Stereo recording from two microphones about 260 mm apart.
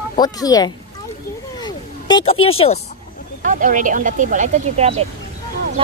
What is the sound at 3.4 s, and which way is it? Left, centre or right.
Speech, right.